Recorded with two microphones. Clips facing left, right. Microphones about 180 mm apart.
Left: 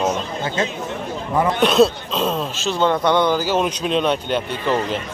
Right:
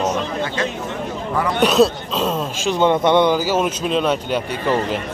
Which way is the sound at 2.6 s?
15° right (ahead or behind).